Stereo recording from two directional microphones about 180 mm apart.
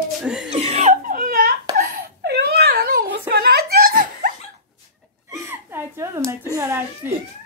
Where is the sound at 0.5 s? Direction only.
35° right (ahead or behind); by 4.3 s 50° right (ahead or behind).